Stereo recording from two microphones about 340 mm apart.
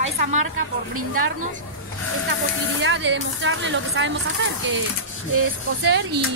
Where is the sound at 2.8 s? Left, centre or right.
Right.